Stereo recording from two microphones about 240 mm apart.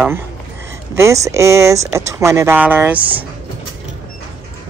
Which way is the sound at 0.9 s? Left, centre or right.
Centre.